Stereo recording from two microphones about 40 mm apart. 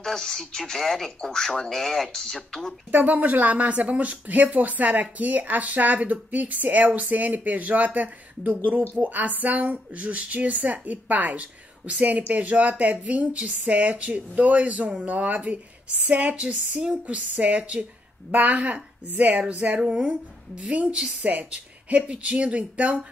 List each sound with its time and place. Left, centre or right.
0.0 s speech: centre
2.9 s speech: right
19.0 s speech: right
19.3 s speech: right
21.2 s speech: right